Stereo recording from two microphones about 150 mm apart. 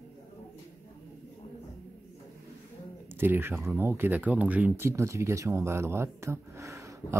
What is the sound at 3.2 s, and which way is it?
Speech, 15° right (ahead or behind).